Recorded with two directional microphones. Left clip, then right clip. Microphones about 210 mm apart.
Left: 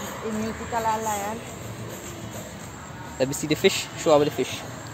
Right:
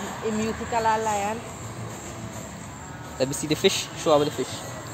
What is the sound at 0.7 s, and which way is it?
Speech, 40° right (ahead or behind).